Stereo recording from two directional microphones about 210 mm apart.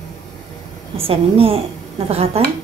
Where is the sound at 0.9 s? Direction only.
30° right (ahead or behind).